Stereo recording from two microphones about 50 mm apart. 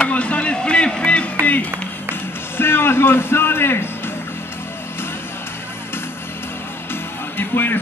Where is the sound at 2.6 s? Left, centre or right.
Left.